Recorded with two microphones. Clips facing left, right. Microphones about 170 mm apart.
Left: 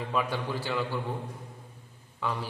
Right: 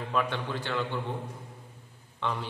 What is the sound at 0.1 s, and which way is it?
Speech, 5° left (ahead or behind).